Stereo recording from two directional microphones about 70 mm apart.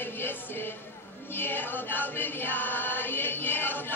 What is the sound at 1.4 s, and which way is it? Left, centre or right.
Choir, left.